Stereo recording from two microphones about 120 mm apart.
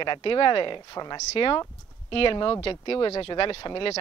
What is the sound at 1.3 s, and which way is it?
A woman's voice, 45° left (ahead or behind).